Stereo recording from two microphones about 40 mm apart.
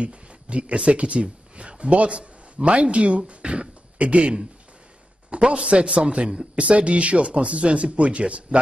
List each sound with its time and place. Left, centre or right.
0.0 s speech: right